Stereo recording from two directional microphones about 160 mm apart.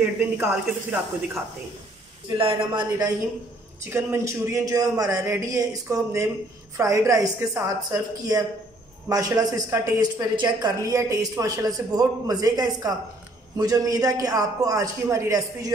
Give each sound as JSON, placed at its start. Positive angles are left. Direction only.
{"t": 0.0, "sound": "speech", "side_deg": -10}
{"t": 2.2, "sound": "a woman's voice", "side_deg": -30}